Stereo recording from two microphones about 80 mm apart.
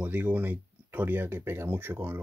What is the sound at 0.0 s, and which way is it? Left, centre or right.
Speech, centre.